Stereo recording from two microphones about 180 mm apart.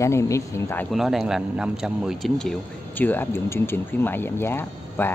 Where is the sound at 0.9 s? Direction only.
Centre (ahead or behind).